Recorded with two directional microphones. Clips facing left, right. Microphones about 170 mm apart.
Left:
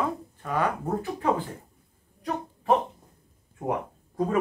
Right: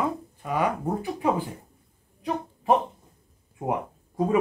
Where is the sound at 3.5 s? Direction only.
15° right (ahead or behind).